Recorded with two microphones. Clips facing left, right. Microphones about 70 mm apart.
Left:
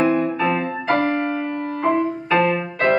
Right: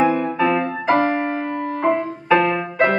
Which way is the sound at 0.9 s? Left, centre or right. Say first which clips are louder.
Right 1 dB; centre.